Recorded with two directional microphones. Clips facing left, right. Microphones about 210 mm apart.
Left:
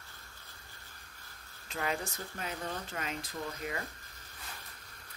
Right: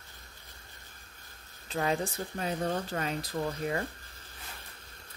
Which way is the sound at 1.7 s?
30° right (ahead or behind).